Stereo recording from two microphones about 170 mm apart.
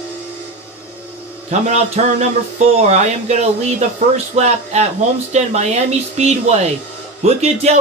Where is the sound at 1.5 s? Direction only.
40° right (ahead or behind).